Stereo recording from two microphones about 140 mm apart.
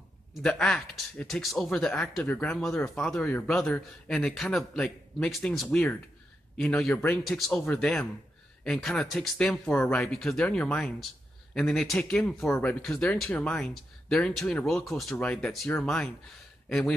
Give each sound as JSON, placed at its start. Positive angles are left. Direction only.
{"t": 0.3, "sound": "speech", "side_deg": 5}
{"t": 12.4, "sound": "speech", "side_deg": 15}
{"t": 12.8, "sound": "speech", "side_deg": 5}